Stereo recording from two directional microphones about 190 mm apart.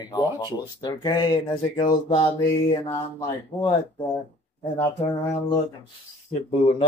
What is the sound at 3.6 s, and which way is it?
Speech, 25° left (ahead or behind).